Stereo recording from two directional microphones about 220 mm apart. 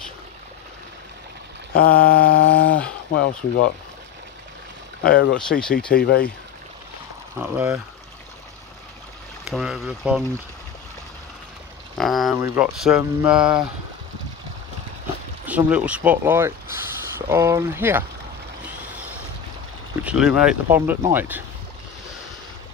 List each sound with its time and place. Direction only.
1.7 s a sound: 40° left (ahead or behind)
3.1 s speech: 55° left (ahead or behind)
5.5 s speech: 5° left (ahead or behind)
5.9 s speech: 45° left (ahead or behind)
7.3 s speech: 10° right (ahead or behind)
9.4 s speech: centre (ahead or behind)
12.0 s speech: centre (ahead or behind)
15.4 s speech: 5° right (ahead or behind)
20.0 s speech: 5° right (ahead or behind)